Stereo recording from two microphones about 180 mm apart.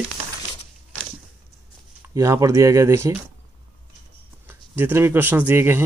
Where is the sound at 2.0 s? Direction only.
20° right (ahead or behind).